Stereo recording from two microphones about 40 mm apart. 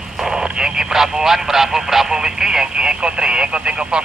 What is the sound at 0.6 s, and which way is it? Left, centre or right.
Speech, centre.